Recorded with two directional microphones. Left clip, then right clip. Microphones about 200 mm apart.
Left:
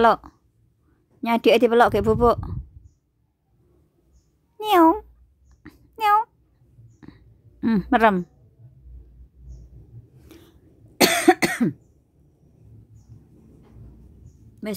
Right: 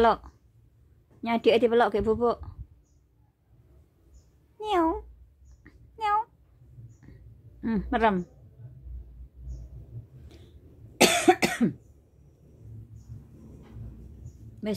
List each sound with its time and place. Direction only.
0.0 s a woman's voice: 35° left (ahead or behind)
4.6 s speech: 40° left (ahead or behind)
5.6 s a sound: 40° left (ahead or behind)
7.6 s a woman's voice: 40° left (ahead or behind)
10.3 s a sound: 35° left (ahead or behind)
11.1 s cough: 40° left (ahead or behind)
14.6 s a woman's voice: 35° left (ahead or behind)